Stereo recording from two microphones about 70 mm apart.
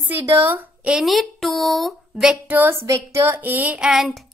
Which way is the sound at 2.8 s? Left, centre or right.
Right.